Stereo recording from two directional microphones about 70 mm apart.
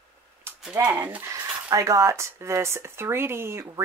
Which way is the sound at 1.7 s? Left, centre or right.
Right.